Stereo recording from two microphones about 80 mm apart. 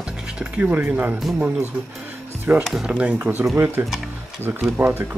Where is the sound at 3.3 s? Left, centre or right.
Right.